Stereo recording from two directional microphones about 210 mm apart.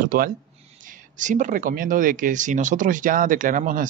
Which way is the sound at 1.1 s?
35° right (ahead or behind).